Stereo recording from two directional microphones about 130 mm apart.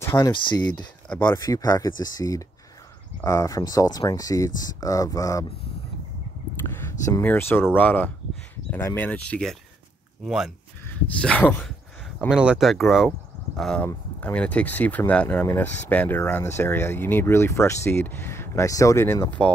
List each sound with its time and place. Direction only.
0.0 s a sound: 20° left (ahead or behind)
0.3 s speech: 35° left (ahead or behind)
6.6 s speech: 20° left (ahead or behind); by 10.5 s 5° right (ahead or behind)
11.1 s speech: 10° left (ahead or behind)
12.3 s speech: 5° right (ahead or behind); by 19.5 s 15° left (ahead or behind)